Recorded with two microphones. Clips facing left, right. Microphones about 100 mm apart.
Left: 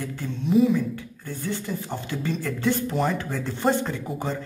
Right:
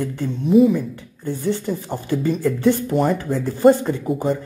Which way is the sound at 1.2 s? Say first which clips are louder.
Right 9 dB; 15° right (ahead or behind).